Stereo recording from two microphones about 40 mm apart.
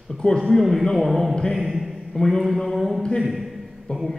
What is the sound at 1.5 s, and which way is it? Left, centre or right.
Speech, centre.